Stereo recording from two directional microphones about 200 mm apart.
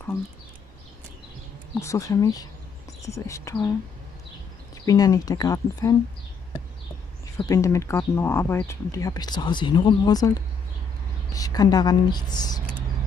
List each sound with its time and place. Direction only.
1.8 s speech: 15° left (ahead or behind)
4.8 s speech: 20° left (ahead or behind)
7.3 s speech: 15° left (ahead or behind)